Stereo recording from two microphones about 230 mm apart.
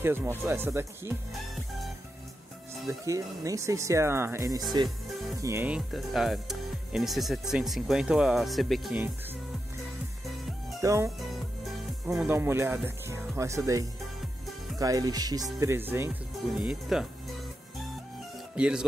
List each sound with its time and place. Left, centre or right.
0.0 s speech: centre
2.9 s speech: centre
5.9 s speech: centre
10.8 s speech: centre
12.1 s speech: centre
18.6 s speech: centre